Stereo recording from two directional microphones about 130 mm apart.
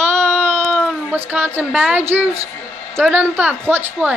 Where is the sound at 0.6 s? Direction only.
10° left (ahead or behind).